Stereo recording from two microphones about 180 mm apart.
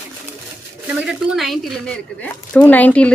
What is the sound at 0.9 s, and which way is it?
A woman's voice, centre (ahead or behind).